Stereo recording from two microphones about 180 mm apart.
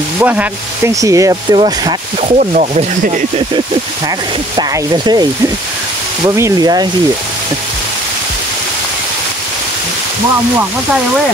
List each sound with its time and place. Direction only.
0.2 s speech: 10° right (ahead or behind); by 2.3 s 25° right (ahead or behind)
2.3 s speech: 40° right (ahead or behind)
4.6 s speech: 25° right (ahead or behind)
6.2 s speech: 20° right (ahead or behind)